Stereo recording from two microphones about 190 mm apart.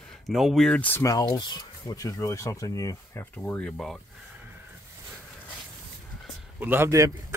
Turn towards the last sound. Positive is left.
turn(degrees=-15)  # may be behind; listen again after turning